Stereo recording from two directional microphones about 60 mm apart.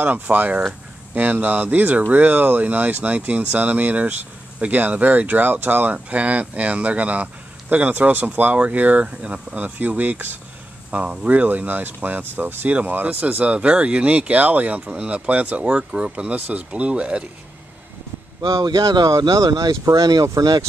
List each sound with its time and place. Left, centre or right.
0.0 s speech: right
18.4 s speech: right